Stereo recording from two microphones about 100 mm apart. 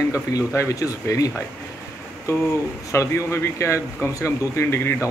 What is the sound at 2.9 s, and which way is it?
Speech, 30° left (ahead or behind).